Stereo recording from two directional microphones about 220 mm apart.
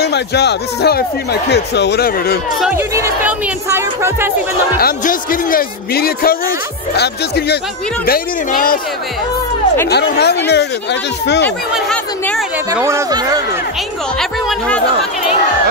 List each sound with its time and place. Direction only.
0.0 s speech: 50° left (ahead or behind)
2.6 s speech: 10° right (ahead or behind)
4.7 s a woman's voice: 40° left (ahead or behind)
9.8 s speech: 50° left (ahead or behind)
11.7 s speech: centre (ahead or behind)
12.8 s speech: 15° right (ahead or behind)